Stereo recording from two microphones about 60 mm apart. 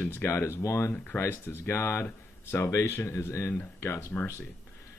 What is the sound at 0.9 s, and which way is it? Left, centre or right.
Speech, left.